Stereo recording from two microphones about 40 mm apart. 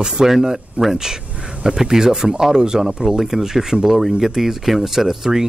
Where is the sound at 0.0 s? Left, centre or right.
Centre.